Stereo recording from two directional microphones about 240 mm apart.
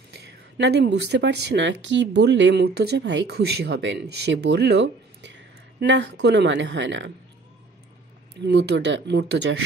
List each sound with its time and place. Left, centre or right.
0.1 s a woman's voice: right
8.5 s a woman's voice: right